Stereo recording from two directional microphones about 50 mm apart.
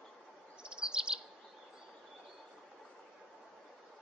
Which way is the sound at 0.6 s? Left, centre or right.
Centre.